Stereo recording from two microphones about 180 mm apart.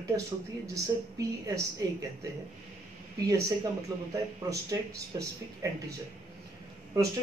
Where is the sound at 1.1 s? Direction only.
20° right (ahead or behind).